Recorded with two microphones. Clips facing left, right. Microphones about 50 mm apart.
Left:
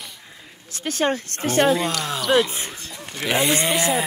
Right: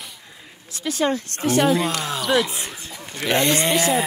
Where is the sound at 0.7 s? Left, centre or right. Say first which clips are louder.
Even; left.